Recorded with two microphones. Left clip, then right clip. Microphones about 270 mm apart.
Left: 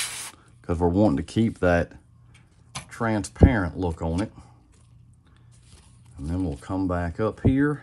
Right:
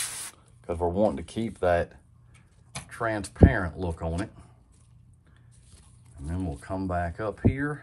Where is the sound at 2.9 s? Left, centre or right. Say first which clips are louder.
Left 2 dB; left.